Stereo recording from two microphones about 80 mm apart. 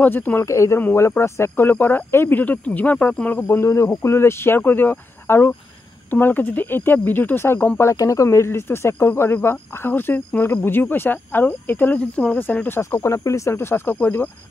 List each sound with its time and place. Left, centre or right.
0.0 s speech: left
0.5 s speech: left
3.4 s speech: left
7.9 s speech: left
12.6 s speech: left